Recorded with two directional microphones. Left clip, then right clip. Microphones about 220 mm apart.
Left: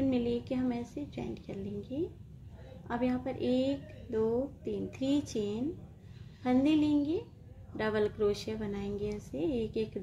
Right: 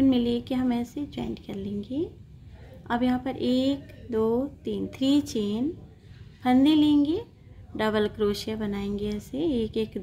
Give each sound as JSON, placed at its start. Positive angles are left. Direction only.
{"t": 0.1, "sound": "speech", "side_deg": -20}
{"t": 2.9, "sound": "speech", "side_deg": -20}